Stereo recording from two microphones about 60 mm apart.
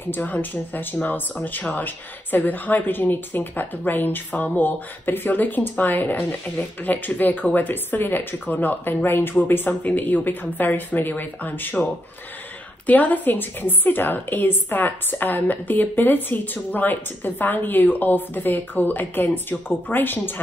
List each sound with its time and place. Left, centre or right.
0.1 s speech: left